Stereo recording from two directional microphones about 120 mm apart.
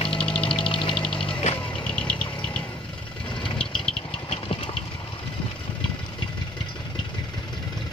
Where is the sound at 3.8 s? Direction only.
45° left (ahead or behind).